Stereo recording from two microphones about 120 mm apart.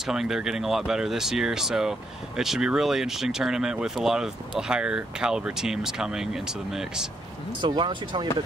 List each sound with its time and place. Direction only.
0.0 s speech: 5° right (ahead or behind)
7.6 s speech: 40° right (ahead or behind)